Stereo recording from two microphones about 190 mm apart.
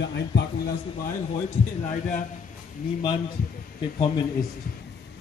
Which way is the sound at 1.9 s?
45° left (ahead or behind).